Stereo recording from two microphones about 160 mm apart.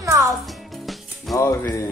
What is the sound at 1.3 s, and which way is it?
Music, 15° left (ahead or behind).